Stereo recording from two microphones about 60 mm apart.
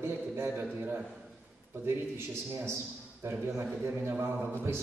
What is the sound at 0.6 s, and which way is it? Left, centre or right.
Mantra, right.